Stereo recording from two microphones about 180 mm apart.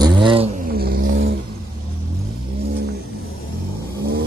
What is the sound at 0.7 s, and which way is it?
Music, 55° right (ahead or behind).